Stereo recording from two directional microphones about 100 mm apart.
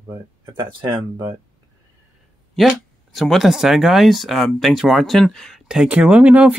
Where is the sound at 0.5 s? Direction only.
50° right (ahead or behind).